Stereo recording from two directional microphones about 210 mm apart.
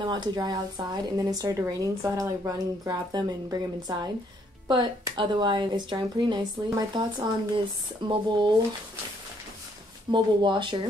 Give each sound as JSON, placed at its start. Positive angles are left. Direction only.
{"t": 0.0, "sound": "a woman's voice", "side_deg": -20}
{"t": 10.1, "sound": "speech", "side_deg": -20}